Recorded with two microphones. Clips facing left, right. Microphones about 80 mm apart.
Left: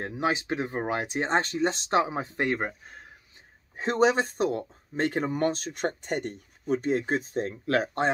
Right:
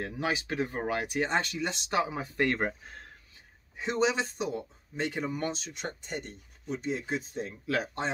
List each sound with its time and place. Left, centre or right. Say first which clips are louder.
0.0 s speech: left 4 dB; left
2.5 s speech: left 1 dB; centre
3.7 s speech: left 5 dB; left